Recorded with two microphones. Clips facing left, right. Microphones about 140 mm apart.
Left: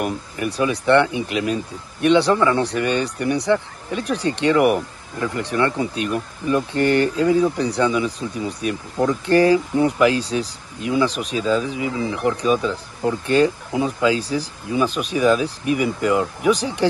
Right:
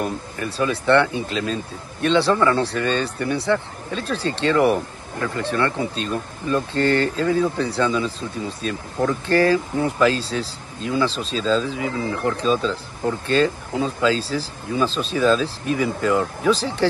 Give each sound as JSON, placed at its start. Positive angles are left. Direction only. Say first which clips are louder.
{"t": 0.0, "sound": "speech", "louder": "left 2 dB", "side_deg": 20}